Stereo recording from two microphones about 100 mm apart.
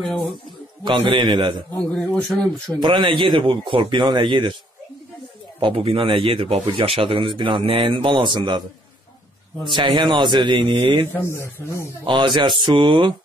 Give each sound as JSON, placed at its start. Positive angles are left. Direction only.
{"t": 0.0, "sound": "speech", "side_deg": 10}
{"t": 0.9, "sound": "a man's voice", "side_deg": -65}
{"t": 1.2, "sound": "a man's voice", "side_deg": -45}
{"t": 1.8, "sound": "speech", "side_deg": 10}
{"t": 2.8, "sound": "a man's voice", "side_deg": -55}
{"t": 5.6, "sound": "a man's voice", "side_deg": -70}
{"t": 9.8, "sound": "a man's voice", "side_deg": -50}
{"t": 11.1, "sound": "speech", "side_deg": 25}
{"t": 12.1, "sound": "a man's voice", "side_deg": -50}